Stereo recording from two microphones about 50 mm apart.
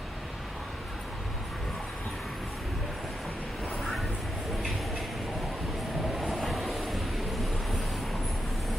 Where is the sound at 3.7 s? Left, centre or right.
Centre.